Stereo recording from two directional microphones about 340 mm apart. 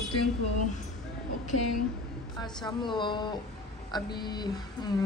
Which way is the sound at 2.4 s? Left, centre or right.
Centre.